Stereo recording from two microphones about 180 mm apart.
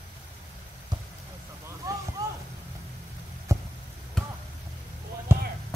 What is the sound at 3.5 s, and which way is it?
Basketball bounce, 15° right (ahead or behind).